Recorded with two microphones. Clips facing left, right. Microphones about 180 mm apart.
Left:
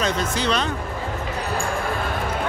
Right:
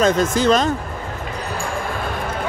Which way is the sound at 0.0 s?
45° right (ahead or behind).